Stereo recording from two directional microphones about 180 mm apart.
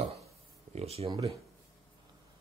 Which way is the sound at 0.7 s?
35° right (ahead or behind).